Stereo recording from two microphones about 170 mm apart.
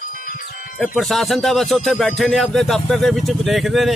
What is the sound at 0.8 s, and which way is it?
Speech, centre (ahead or behind).